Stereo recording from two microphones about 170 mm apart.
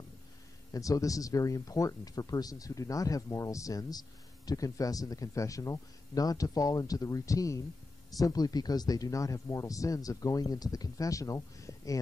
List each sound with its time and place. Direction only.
0.7 s speech: 20° left (ahead or behind)